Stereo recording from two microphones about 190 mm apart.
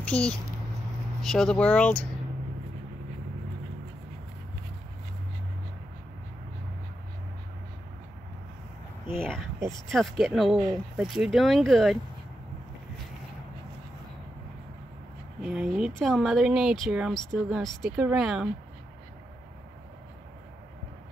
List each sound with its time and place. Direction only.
0.0 s speech: 5° left (ahead or behind)
9.8 s speech: centre (ahead or behind)
15.4 s speech: 5° right (ahead or behind)